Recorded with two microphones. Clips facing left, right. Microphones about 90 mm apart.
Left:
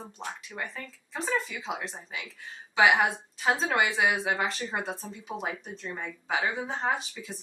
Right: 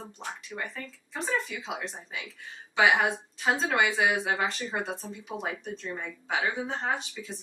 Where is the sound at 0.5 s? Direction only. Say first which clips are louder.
Right 1 dB; 5° right (ahead or behind).